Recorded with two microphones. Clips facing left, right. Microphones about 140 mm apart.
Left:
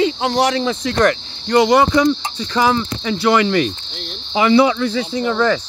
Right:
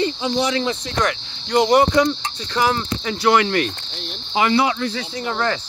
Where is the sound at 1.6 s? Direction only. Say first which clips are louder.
Left 2 dB; 90° left.